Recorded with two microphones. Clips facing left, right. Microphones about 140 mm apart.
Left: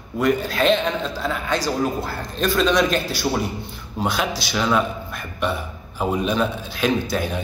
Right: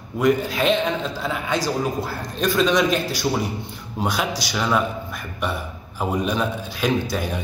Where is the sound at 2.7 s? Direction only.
15° right (ahead or behind).